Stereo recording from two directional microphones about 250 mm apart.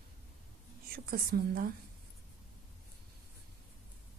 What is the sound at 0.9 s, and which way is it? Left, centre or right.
Speech, right.